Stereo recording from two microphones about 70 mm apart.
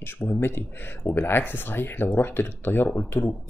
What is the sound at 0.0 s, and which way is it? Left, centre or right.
Speech, left.